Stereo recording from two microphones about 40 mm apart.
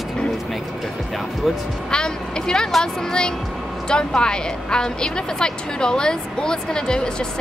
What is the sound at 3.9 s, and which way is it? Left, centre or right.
A woman's voice, centre.